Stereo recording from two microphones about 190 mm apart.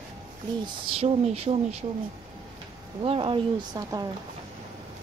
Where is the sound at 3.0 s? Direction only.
30° right (ahead or behind).